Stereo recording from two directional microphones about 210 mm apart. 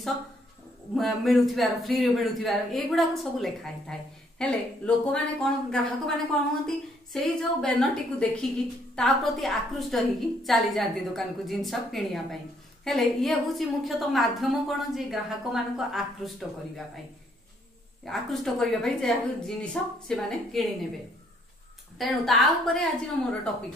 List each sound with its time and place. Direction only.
0.9 s a woman's voice: centre (ahead or behind)
18.0 s a woman's voice: centre (ahead or behind)
21.9 s a woman's voice: centre (ahead or behind)